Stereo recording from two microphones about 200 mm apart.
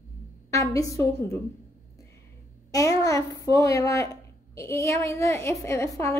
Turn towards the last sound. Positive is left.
turn(degrees=15)  # may be behind; listen again after turning